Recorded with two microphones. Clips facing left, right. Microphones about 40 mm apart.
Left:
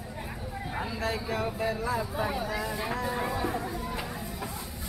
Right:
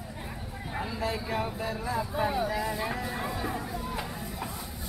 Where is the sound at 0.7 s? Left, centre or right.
Centre.